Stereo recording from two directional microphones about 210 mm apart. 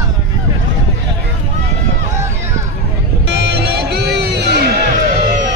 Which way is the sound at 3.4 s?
50° right (ahead or behind).